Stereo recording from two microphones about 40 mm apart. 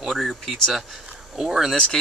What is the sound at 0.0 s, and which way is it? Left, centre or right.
Speech, centre.